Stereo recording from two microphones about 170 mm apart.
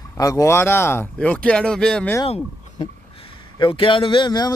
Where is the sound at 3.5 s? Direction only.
30° left (ahead or behind).